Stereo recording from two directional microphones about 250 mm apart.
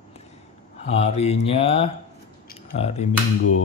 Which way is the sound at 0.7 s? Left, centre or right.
Left.